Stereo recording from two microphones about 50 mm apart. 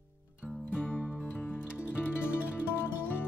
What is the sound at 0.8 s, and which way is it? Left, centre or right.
Music, left.